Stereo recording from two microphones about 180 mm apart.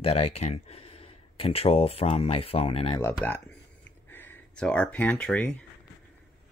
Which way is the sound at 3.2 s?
5° left (ahead or behind).